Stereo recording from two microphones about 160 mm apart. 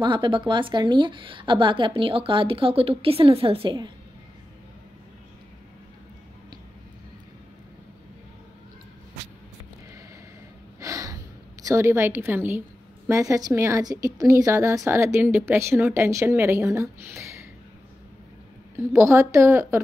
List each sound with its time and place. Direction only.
0.0 s a woman's voice: 30° right (ahead or behind)
10.8 s a sound: 20° right (ahead or behind)
11.6 s a woman's voice: 15° right (ahead or behind)
18.9 s a woman's voice: 15° right (ahead or behind)